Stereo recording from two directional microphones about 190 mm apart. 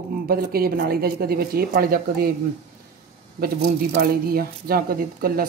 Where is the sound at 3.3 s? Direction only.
50° right (ahead or behind).